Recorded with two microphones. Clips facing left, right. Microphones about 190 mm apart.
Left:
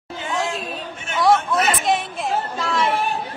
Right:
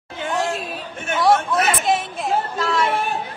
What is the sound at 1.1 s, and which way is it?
Chatter, centre (ahead or behind).